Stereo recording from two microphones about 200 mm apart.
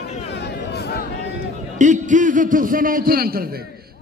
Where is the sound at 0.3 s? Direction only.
55° left (ahead or behind).